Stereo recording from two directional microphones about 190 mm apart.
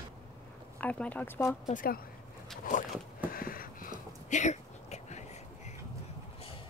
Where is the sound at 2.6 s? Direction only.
45° left (ahead or behind).